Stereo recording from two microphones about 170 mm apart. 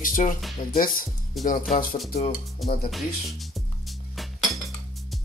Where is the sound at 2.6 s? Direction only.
Centre (ahead or behind).